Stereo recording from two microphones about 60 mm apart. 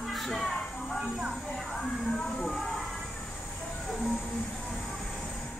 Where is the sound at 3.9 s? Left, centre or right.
Centre.